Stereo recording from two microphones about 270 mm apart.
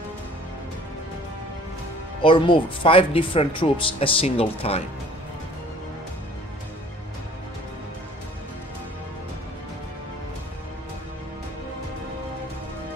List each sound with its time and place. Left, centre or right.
2.2 s speech: centre